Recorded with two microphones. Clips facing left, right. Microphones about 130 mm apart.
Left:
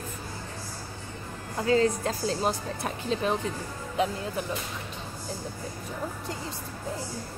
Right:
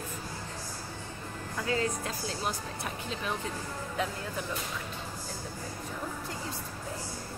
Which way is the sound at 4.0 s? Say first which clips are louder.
Left 7 dB; 20° left (ahead or behind).